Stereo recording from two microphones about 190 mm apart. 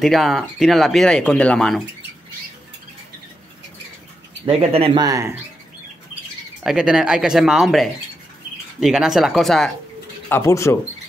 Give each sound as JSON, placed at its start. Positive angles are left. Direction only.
{"t": 0.0, "sound": "speech", "side_deg": 0}
{"t": 4.5, "sound": "speech", "side_deg": -30}
{"t": 6.6, "sound": "speech", "side_deg": 0}
{"t": 10.3, "sound": "speech", "side_deg": 15}